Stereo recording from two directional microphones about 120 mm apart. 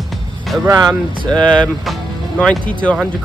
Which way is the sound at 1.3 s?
10° left (ahead or behind).